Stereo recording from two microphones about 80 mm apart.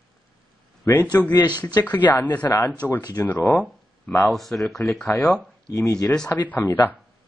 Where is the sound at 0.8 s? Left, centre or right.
Left.